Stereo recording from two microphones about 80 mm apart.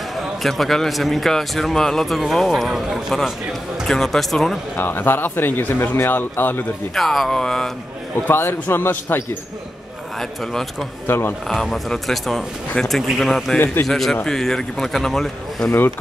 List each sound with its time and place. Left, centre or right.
0.1 s a man's voice: centre
4.7 s speech: left
7.0 s a man's voice: centre
8.3 s speech: left
10.1 s a man's voice: centre
11.1 s speech: left
11.4 s a man's voice: centre